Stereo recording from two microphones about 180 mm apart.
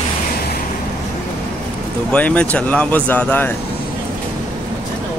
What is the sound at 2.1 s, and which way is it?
Speech, 5° left (ahead or behind).